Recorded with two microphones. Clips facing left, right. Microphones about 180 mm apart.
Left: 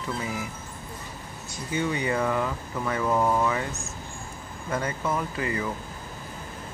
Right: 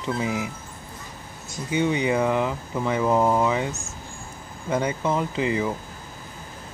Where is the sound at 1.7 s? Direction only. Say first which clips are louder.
Right 5 dB; 20° right (ahead or behind).